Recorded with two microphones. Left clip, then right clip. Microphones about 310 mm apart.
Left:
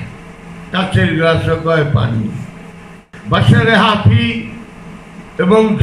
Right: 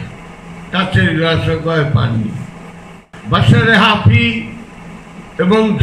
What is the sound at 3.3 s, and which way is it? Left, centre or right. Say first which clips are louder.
Speech: even; centre.